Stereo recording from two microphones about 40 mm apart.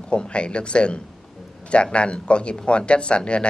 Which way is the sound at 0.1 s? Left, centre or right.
Left.